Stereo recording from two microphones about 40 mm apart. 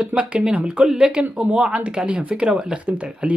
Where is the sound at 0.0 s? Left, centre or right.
Right.